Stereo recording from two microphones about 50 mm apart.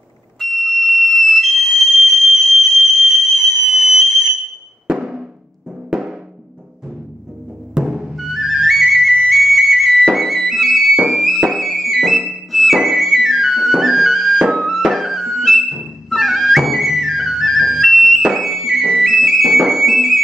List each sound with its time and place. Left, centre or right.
0.4 s music: centre
4.8 s music: centre
7.7 s music: centre
8.2 s flute: centre
10.0 s music: centre
12.4 s flute: centre
14.5 s music: centre